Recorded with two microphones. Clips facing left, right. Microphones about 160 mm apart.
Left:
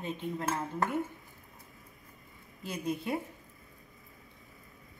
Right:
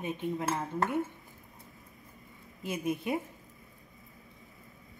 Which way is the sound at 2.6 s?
20° right (ahead or behind).